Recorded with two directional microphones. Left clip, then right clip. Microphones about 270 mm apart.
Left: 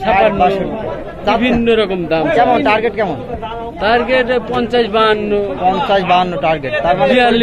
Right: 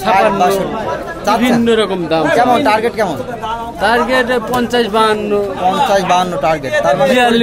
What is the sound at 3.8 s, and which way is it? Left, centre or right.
Speech, right.